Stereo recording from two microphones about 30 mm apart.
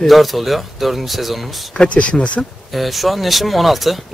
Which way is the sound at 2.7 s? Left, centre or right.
Centre.